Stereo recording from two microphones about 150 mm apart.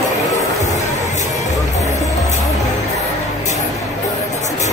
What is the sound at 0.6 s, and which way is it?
Music, 50° left (ahead or behind).